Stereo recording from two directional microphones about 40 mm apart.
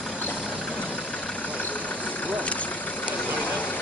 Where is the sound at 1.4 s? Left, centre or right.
Left.